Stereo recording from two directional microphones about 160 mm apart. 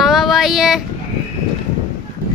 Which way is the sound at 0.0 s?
Centre (ahead or behind).